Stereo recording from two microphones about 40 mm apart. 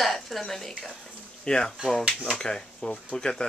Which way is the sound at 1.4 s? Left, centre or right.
Left.